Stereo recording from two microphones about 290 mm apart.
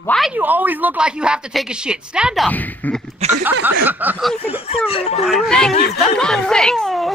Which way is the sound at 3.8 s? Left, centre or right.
Centre.